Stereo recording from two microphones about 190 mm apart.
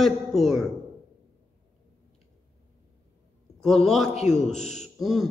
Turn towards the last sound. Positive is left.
turn(degrees=0)  # may be behind; listen again after turning